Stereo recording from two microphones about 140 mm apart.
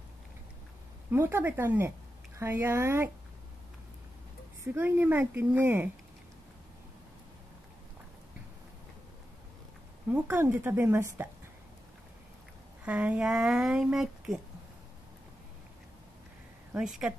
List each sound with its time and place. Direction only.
1.1 s speech: 15° right (ahead or behind)
4.7 s speech: 15° right (ahead or behind)
10.0 s speech: 15° right (ahead or behind)
12.8 s speech: 10° right (ahead or behind)
16.7 s speech: 5° right (ahead or behind)